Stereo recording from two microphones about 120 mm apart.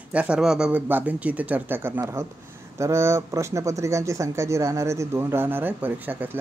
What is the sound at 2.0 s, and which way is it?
Speech, 25° right (ahead or behind).